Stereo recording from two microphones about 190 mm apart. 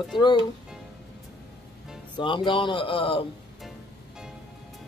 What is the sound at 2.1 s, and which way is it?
Speech, 25° left (ahead or behind).